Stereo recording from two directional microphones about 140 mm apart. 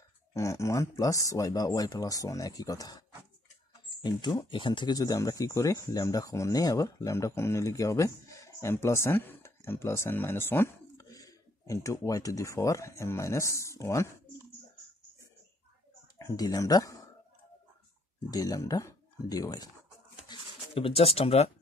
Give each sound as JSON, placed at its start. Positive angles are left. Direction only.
{"t": 0.3, "sound": "speech", "side_deg": 20}
{"t": 4.0, "sound": "speech", "side_deg": 30}
{"t": 16.2, "sound": "speech", "side_deg": 25}
{"t": 18.3, "sound": "speech", "side_deg": 25}
{"t": 20.2, "sound": "a sound", "side_deg": 40}